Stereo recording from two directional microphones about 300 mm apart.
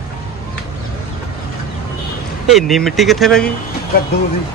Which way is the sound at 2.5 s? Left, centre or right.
Centre.